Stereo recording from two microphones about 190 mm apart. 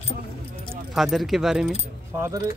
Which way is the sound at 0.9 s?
Centre (ahead or behind).